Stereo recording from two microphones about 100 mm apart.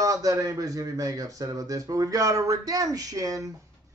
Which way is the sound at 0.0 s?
35° right (ahead or behind).